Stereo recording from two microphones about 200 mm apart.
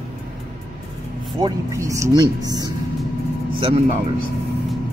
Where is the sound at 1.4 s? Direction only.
20° right (ahead or behind).